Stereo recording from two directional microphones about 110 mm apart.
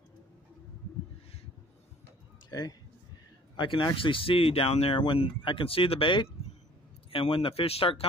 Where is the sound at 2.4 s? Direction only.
35° left (ahead or behind); by 5.0 s 65° left (ahead or behind).